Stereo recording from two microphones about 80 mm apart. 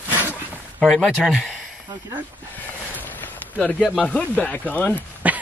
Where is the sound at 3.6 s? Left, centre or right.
Centre.